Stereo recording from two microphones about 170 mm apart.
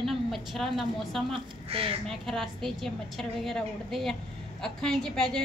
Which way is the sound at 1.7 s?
35° right (ahead or behind).